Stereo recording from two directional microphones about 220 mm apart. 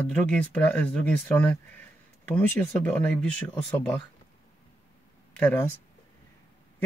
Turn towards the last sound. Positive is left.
turn(degrees=10)  # may be behind; listen again after turning